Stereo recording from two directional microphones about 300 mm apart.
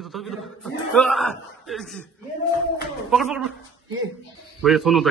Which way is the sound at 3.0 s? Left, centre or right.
Centre.